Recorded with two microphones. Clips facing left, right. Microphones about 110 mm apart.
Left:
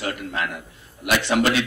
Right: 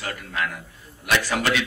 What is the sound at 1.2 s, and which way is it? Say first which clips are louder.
Speech: left 4 dB; 25° left (ahead or behind).